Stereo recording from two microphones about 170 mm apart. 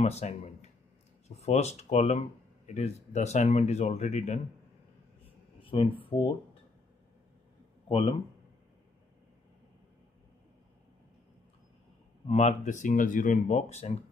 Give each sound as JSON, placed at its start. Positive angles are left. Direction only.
{"t": 0.0, "sound": "speech", "side_deg": 40}
{"t": 5.6, "sound": "speech", "side_deg": 30}
{"t": 7.9, "sound": "speech", "side_deg": 35}
{"t": 12.3, "sound": "speech", "side_deg": 40}